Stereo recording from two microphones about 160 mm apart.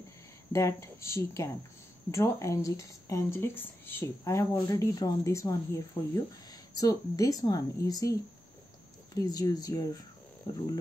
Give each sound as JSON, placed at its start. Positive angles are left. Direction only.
{"t": 0.5, "sound": "speech", "side_deg": 15}